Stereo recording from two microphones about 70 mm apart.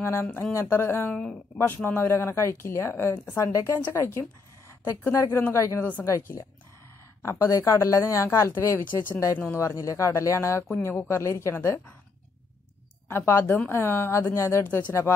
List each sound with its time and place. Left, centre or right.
0.0 s speech: left
3.3 s speech: left
5.8 s speech: left
7.2 s speech: left
13.1 s speech: left